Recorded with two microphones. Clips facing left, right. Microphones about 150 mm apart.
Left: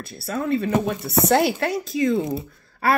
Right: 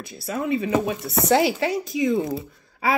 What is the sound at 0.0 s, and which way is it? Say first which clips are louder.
Speech: left 1 dB; 15° right (ahead or behind).